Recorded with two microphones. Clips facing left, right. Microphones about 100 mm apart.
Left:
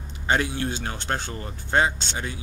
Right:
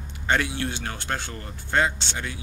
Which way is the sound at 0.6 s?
20° left (ahead or behind).